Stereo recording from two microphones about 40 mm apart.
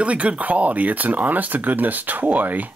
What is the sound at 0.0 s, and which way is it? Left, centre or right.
Speech, right.